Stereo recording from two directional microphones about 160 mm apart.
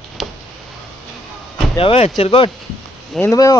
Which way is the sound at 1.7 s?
35° left (ahead or behind).